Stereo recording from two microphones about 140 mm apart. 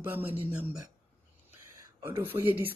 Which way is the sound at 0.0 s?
15° right (ahead or behind).